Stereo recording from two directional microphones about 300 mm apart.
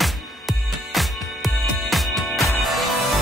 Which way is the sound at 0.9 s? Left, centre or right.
Centre.